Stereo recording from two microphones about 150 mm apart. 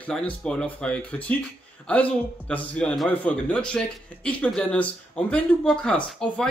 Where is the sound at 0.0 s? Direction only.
10° left (ahead or behind).